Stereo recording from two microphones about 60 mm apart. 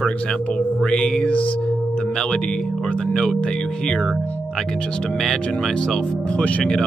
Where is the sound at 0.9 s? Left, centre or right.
Centre.